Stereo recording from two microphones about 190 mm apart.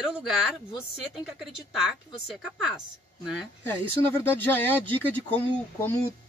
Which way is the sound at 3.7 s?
10° left (ahead or behind).